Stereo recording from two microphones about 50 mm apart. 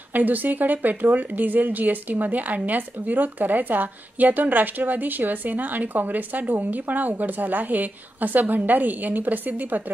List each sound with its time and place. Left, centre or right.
0.1 s a woman's voice: right